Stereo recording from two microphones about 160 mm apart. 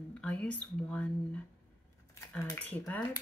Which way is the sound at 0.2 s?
10° left (ahead or behind).